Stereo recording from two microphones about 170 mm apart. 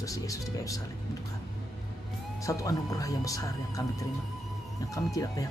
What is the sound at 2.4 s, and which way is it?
Speech, 20° left (ahead or behind).